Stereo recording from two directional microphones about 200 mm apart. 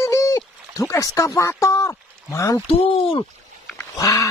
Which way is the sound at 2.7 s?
25° left (ahead or behind).